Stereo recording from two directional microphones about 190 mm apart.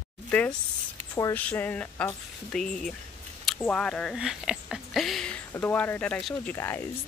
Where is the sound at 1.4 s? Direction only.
5° left (ahead or behind).